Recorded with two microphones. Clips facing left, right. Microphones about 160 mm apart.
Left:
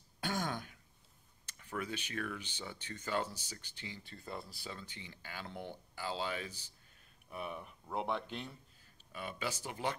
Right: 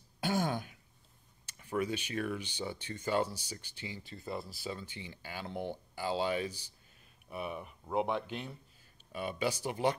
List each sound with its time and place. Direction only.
0.2 s throat clearing: 10° right (ahead or behind)
1.4 s a sound: 15° right (ahead or behind)
2.2 s speech: 15° right (ahead or behind)
9.1 s speech: 20° right (ahead or behind)